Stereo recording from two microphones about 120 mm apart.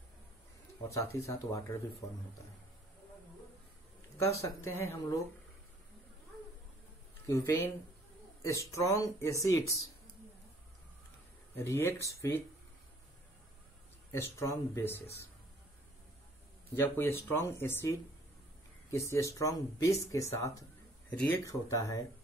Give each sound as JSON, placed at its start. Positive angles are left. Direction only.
{"t": 0.8, "sound": "speech", "side_deg": 25}
{"t": 4.2, "sound": "speech", "side_deg": 25}
{"t": 7.2, "sound": "speech", "side_deg": 25}
{"t": 11.5, "sound": "speech", "side_deg": 20}
{"t": 14.1, "sound": "speech", "side_deg": 20}
{"t": 16.7, "sound": "speech", "side_deg": 20}